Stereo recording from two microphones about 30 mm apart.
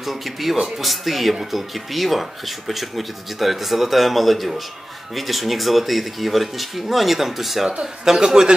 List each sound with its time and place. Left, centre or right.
0.0 s speech: centre
1.3 s speech: centre
1.9 s speech: centre
7.8 s speech: centre